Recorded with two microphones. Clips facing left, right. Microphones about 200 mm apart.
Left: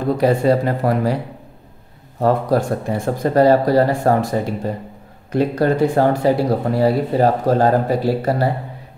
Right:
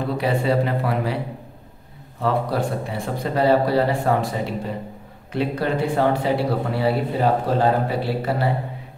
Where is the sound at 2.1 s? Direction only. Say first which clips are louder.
Left 6 dB; 45° left (ahead or behind).